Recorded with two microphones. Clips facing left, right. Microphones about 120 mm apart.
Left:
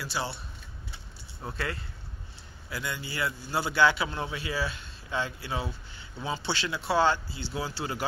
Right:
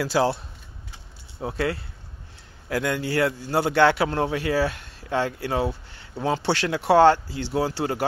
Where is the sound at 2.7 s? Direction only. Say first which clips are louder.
Right 11 dB; 75° right (ahead or behind); by 8.1 s 60° right (ahead or behind).